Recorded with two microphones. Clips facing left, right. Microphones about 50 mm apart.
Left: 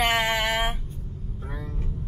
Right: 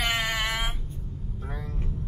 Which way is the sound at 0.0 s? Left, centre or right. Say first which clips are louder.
Left 4 dB; left.